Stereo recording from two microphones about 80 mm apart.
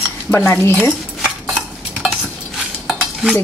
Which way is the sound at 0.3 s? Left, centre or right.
Left.